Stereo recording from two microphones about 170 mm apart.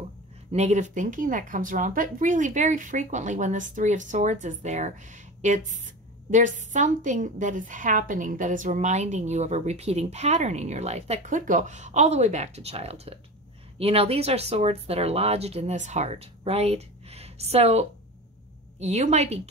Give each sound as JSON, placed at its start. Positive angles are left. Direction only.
{"t": 0.5, "sound": "a woman's voice", "side_deg": -40}